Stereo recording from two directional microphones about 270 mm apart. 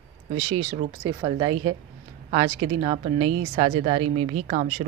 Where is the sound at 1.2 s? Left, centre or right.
Centre.